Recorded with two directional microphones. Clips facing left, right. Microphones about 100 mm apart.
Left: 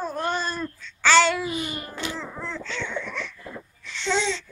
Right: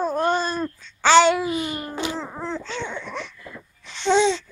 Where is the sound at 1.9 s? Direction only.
20° right (ahead or behind).